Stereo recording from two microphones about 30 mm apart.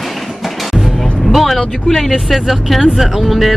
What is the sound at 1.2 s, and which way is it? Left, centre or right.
Vehicle, centre.